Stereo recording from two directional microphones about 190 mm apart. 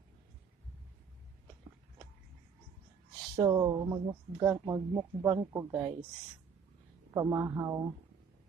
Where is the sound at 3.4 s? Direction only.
20° right (ahead or behind).